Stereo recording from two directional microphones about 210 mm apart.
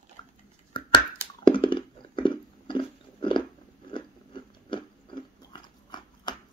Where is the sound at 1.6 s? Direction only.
25° left (ahead or behind).